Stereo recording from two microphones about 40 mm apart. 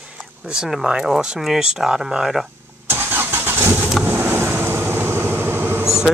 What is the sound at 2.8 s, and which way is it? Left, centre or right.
Vehicle, right.